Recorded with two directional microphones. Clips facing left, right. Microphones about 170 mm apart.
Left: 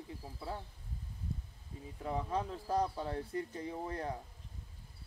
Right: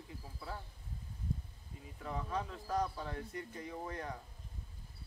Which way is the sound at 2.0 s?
30° left (ahead or behind).